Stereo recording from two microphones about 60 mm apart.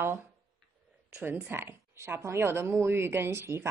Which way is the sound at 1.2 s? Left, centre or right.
Right.